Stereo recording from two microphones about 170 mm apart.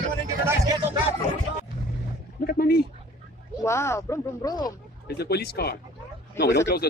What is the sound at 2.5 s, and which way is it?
Speech, 65° left (ahead or behind).